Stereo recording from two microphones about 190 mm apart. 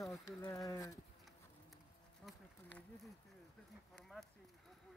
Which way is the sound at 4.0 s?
Centre (ahead or behind).